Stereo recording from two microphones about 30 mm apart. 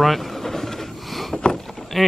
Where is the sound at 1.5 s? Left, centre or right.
Centre.